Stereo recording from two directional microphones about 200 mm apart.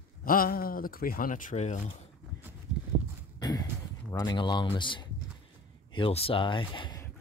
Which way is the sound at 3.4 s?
20° left (ahead or behind).